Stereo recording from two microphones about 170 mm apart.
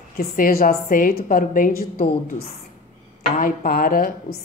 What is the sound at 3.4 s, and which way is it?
Speech, 60° left (ahead or behind).